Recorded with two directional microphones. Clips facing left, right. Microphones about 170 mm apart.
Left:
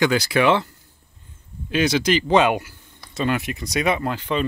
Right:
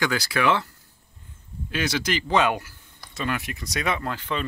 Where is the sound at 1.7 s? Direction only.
20° left (ahead or behind).